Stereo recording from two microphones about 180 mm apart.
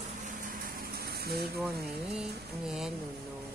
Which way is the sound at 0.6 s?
55° right (ahead or behind).